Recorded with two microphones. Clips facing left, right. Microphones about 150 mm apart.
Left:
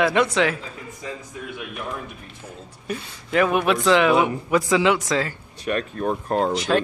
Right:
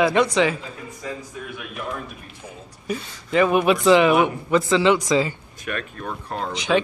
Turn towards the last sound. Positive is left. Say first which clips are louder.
# even
turn(degrees=0)  # may be behind; listen again after turning